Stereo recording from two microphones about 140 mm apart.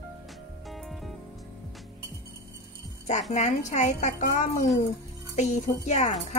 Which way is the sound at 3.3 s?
55° left (ahead or behind).